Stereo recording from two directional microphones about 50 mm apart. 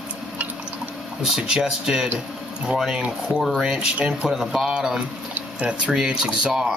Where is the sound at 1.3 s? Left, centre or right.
Centre.